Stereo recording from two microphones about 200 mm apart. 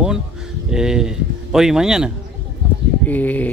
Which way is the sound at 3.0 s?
10° left (ahead or behind).